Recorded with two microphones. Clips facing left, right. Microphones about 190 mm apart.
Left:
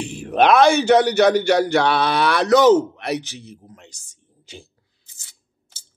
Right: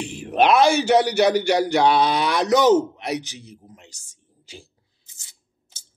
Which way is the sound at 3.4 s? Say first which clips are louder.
Left 3 dB; 15° right (ahead or behind).